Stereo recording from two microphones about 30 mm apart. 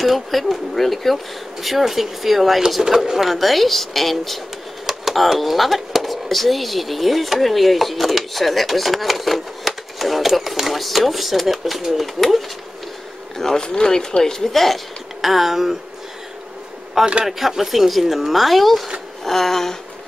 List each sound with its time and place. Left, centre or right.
0.0 s speech: centre
3.3 s speech: centre
13.4 s speech: centre
15.2 s speech: centre
17.2 s speech: centre